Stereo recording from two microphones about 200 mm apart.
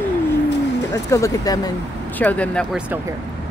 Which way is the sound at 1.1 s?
15° left (ahead or behind).